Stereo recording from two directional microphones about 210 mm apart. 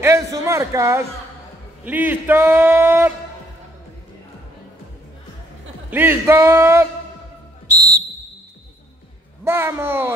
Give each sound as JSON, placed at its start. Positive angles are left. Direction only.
{"t": 0.0, "sound": "a sound", "side_deg": -15}
{"t": 1.9, "sound": "a man's voice", "side_deg": -10}
{"t": 5.9, "sound": "a man's voice", "side_deg": -10}
{"t": 9.4, "sound": "a man's voice", "side_deg": -10}